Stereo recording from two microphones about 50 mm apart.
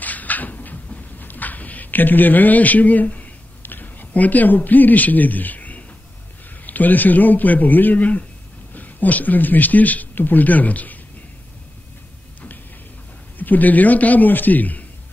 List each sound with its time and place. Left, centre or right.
0.0 s a sound: left
6.6 s speech: left
13.4 s speech: left